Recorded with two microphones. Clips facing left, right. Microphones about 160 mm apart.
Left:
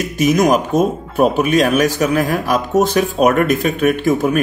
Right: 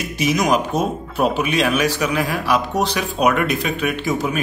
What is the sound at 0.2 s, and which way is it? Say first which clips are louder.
Speech: left 5 dB; 50° left (ahead or behind).